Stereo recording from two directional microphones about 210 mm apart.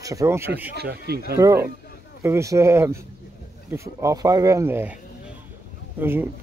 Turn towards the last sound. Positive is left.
turn(degrees=-10)  # may be behind; listen again after turning